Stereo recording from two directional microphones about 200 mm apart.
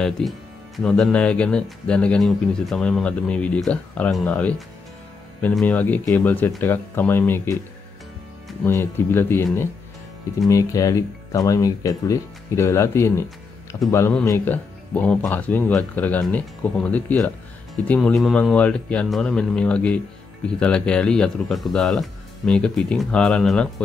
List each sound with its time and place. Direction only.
0.2 s speech: 5° left (ahead or behind)
8.6 s speech: 10° left (ahead or behind)